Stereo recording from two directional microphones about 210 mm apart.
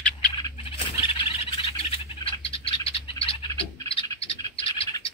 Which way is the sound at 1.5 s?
25° left (ahead or behind).